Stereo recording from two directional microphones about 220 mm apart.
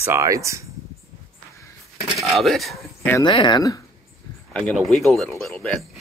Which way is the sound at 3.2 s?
20° left (ahead or behind).